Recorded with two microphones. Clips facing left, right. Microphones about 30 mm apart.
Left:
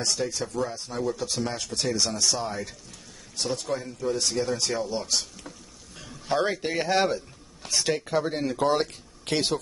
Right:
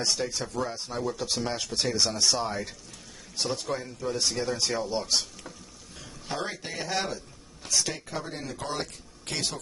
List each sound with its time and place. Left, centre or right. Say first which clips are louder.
0.2 s speech: left 2 dB; centre
6.2 s a man's voice: left 8 dB; centre
6.7 s speech: left 6 dB; left